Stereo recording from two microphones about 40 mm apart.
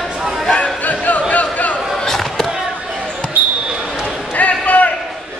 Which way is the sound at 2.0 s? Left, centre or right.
Centre.